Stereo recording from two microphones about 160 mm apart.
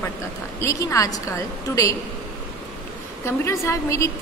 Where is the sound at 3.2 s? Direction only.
15° left (ahead or behind).